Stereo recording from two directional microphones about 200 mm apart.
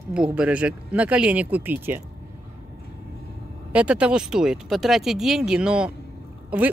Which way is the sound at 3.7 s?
5° right (ahead or behind).